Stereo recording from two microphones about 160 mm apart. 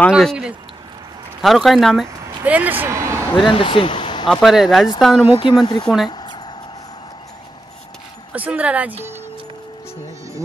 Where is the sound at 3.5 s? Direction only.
35° left (ahead or behind).